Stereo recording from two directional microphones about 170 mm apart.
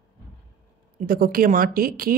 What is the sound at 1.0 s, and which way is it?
Speech, 55° right (ahead or behind).